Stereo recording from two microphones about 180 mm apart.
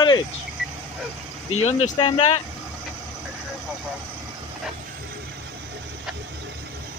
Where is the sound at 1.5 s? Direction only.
35° left (ahead or behind).